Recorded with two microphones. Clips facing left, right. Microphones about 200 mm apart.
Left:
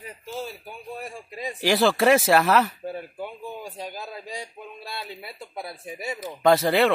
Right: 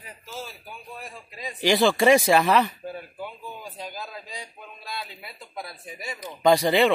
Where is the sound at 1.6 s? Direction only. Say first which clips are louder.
Even; centre (ahead or behind).